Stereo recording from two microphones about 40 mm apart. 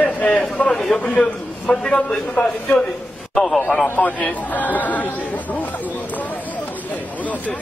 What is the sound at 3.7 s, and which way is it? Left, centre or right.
A man's voice, left.